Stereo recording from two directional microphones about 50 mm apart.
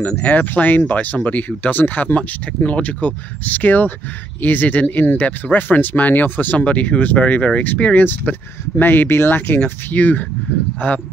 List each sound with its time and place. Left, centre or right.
0.0 s speech: left
2.1 s speech: left